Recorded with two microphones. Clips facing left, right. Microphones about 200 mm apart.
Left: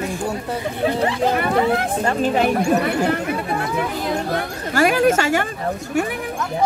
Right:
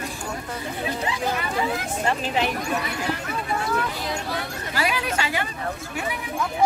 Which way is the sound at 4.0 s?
50° left (ahead or behind).